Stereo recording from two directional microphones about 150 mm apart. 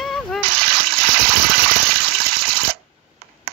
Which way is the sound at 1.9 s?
90° right.